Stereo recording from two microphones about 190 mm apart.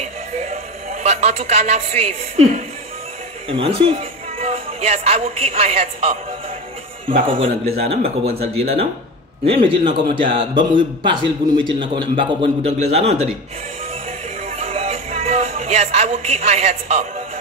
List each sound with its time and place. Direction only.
0.0 s music: 35° right (ahead or behind)
1.0 s speech: 35° right (ahead or behind)
3.4 s speech: 30° right (ahead or behind)
7.3 s a man's voice: 30° right (ahead or behind)
14.6 s music: 30° right (ahead or behind)